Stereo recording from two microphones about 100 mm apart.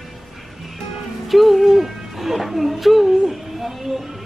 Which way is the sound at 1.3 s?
Centre (ahead or behind).